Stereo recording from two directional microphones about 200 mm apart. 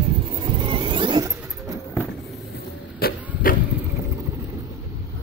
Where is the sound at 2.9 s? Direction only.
50° left (ahead or behind).